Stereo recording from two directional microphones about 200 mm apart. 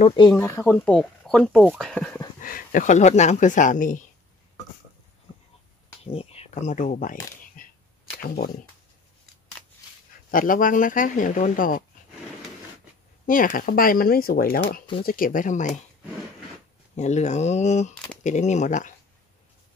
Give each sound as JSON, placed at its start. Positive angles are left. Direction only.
{"t": 0.0, "sound": "speech", "side_deg": 25}
{"t": 0.3, "sound": "speech", "side_deg": 10}
{"t": 2.4, "sound": "speech", "side_deg": 40}
{"t": 6.0, "sound": "speech", "side_deg": 30}
{"t": 7.6, "sound": "a sound", "side_deg": 45}
{"t": 10.3, "sound": "speech", "side_deg": 45}
{"t": 13.3, "sound": "speech", "side_deg": 45}
{"t": 16.9, "sound": "speech", "side_deg": 35}